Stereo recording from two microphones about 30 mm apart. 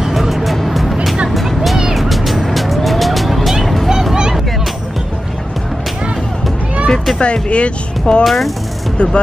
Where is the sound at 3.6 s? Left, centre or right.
Centre.